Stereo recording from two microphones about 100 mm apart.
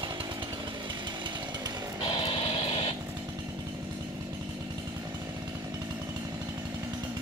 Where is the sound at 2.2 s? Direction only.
65° left (ahead or behind).